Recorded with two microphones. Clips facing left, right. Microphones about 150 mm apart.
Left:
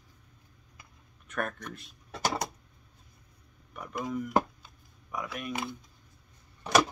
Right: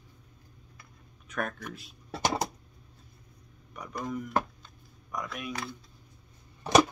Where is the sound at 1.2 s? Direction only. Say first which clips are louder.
Even; centre (ahead or behind).